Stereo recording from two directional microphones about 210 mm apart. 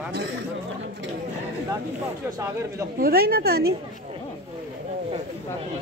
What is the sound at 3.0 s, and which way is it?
Speech, 45° right (ahead or behind).